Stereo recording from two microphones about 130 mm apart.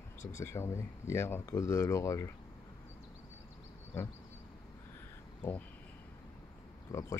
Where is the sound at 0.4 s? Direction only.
20° left (ahead or behind).